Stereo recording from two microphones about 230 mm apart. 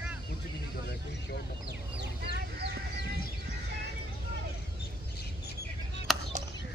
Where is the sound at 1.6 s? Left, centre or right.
Right.